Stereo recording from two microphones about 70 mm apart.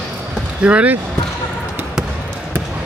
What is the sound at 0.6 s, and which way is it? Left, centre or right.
Speech, centre.